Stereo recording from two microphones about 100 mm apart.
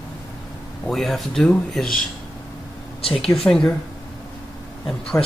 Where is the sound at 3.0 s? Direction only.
75° left (ahead or behind).